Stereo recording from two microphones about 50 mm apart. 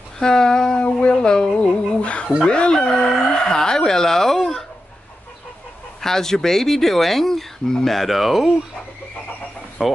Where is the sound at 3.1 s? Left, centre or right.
Centre.